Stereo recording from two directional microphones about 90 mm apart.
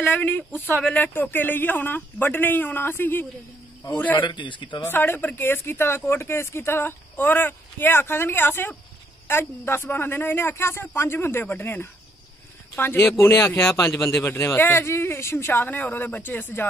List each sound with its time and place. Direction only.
0.0 s speech: 20° left (ahead or behind)
4.2 s a man's voice: 65° left (ahead or behind)
4.8 s speech: 25° left (ahead or behind)